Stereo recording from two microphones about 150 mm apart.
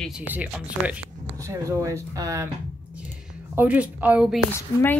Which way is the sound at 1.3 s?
20° right (ahead or behind).